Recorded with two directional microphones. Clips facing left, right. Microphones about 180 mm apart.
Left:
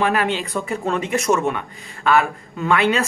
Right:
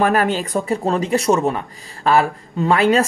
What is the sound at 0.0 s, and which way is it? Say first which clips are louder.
Speech: right 3 dB; 45° right (ahead or behind).